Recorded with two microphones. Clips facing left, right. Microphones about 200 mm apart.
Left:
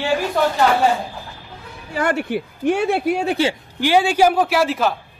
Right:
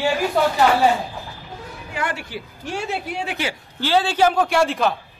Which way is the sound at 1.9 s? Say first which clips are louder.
Left 8 dB; 45° left (ahead or behind).